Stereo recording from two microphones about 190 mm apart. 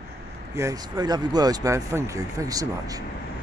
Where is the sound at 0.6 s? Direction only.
20° right (ahead or behind).